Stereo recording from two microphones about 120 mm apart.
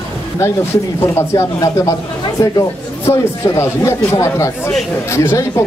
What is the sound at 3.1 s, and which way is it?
Speech, 20° left (ahead or behind).